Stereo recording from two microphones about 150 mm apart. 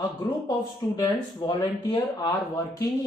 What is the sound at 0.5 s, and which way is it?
Speech, 25° left (ahead or behind).